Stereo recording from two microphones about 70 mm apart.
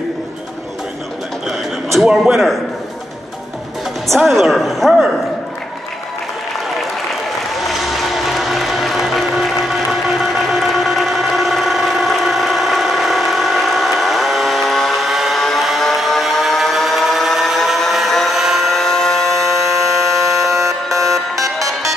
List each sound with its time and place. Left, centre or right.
4.2 s a woman's voice: centre
7.5 s music: centre
21.0 s music: right